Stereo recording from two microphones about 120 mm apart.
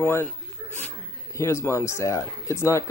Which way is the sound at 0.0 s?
20° left (ahead or behind).